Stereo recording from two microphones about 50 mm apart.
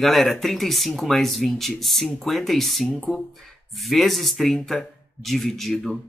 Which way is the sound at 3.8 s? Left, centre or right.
Centre.